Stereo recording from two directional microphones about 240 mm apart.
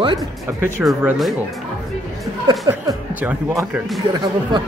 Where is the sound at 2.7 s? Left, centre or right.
Centre.